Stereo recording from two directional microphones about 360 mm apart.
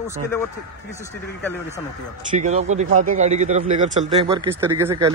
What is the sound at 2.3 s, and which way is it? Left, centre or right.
Speech, centre.